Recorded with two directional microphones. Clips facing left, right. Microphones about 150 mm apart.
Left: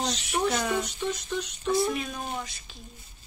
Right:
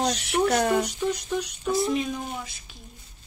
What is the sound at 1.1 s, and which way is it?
Speech, 10° right (ahead or behind).